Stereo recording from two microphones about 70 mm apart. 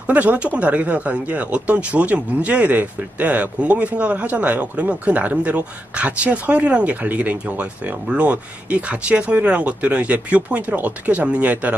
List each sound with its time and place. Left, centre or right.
0.0 s speech: right